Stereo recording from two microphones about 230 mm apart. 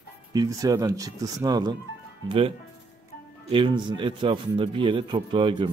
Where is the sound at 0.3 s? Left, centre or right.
Centre.